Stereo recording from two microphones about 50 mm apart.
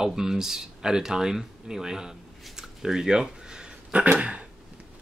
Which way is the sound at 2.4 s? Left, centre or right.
Centre.